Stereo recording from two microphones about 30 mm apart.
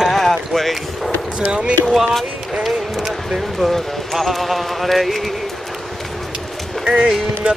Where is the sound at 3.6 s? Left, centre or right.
Centre.